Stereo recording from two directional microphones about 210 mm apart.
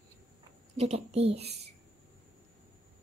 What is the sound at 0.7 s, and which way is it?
Speech, 30° right (ahead or behind).